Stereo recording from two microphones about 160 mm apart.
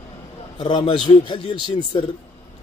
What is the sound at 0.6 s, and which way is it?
A man's voice, 30° left (ahead or behind).